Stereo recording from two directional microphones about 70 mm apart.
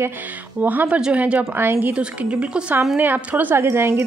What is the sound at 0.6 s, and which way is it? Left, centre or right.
A woman's voice, right.